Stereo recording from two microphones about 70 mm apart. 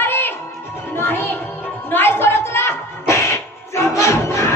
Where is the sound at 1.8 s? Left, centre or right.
Left.